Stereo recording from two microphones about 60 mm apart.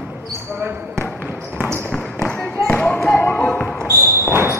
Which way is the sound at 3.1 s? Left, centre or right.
Left.